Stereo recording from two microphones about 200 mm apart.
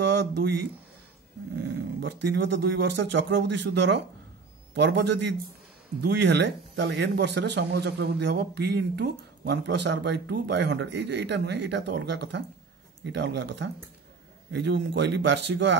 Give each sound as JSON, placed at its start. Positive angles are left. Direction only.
{"t": 0.0, "sound": "speech", "side_deg": -60}